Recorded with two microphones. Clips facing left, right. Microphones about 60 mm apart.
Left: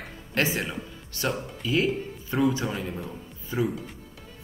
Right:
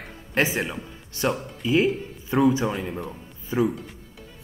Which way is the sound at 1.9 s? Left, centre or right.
Centre.